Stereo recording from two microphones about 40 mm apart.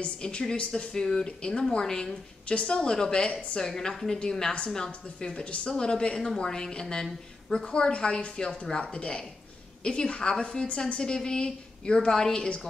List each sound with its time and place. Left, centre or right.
0.2 s a woman's voice: centre
2.4 s a woman's voice: left